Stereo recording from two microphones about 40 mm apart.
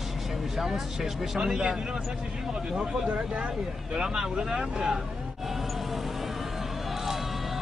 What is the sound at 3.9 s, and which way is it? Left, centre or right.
Speech, right.